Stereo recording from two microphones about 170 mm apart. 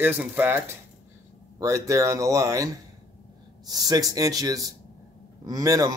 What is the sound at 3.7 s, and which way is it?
Speech, 20° right (ahead or behind).